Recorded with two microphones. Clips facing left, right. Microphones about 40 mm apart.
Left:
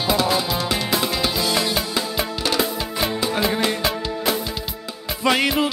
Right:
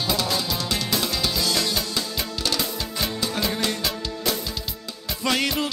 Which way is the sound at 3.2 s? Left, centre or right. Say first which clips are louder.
Left 4 dB; centre.